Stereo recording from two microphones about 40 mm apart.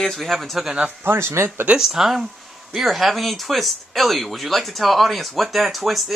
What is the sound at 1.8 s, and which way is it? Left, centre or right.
Speech, centre.